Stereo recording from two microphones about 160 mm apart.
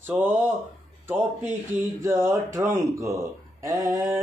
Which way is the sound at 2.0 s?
15° right (ahead or behind).